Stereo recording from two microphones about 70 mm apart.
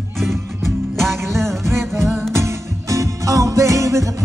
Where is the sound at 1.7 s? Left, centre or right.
Right.